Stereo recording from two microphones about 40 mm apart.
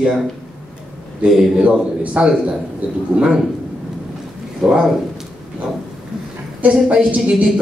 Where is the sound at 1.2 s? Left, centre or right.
Centre.